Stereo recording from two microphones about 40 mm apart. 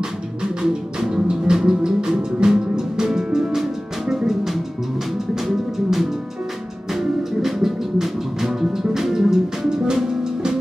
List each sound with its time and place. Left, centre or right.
1.2 s music: centre